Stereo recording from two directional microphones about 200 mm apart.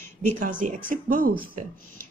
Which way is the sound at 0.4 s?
40° right (ahead or behind).